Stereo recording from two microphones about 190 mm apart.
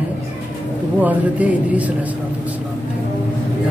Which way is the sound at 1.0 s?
10° right (ahead or behind).